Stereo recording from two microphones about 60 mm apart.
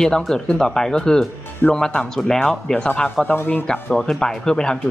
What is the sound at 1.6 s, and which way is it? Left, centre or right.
Speech, left.